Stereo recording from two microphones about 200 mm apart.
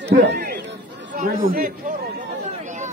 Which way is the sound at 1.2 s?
45° right (ahead or behind).